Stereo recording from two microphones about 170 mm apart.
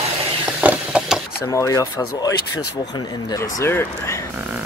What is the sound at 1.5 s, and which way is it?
Speech, 20° left (ahead or behind).